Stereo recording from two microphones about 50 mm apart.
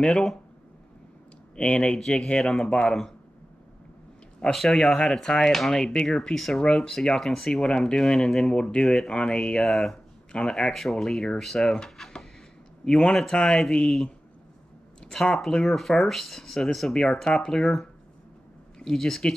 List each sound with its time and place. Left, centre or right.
1.6 s speech: left
2.4 s speech: centre
2.7 s speech: centre
4.6 s speech: centre
6.3 s speech: centre
10.7 s speech: centre
15.0 s speech: centre
15.6 s speech: centre
18.9 s speech: centre